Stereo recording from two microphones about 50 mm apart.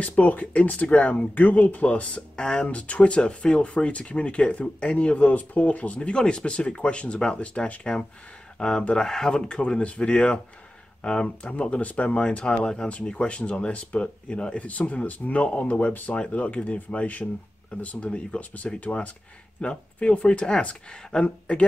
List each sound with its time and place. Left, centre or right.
0.0 s speech: left; by 2.7 s centre
2.7 s speech: left
5.9 s speech: centre
8.5 s speech: centre; by 12.2 s left
12.2 s speech: centre